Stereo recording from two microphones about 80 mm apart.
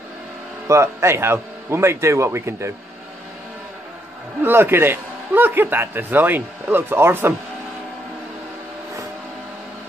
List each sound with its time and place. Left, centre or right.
0.7 s a man's voice: right
4.4 s a man's voice: right